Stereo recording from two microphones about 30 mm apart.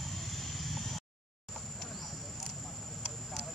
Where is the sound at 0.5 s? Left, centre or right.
Centre.